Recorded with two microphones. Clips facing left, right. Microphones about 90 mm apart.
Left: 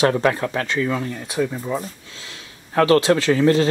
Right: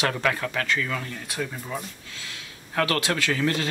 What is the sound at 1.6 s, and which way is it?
Speech, 30° left (ahead or behind).